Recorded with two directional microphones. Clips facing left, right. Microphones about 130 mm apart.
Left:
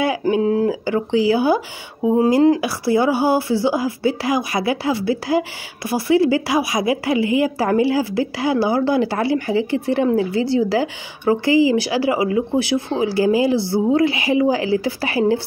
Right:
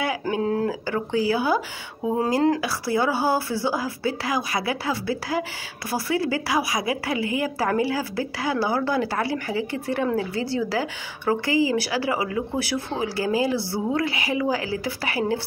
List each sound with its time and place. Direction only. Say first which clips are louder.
0.0 s speech: left 7 dB; 20° left (ahead or behind)